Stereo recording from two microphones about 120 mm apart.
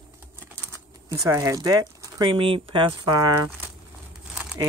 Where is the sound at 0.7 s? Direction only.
25° right (ahead or behind).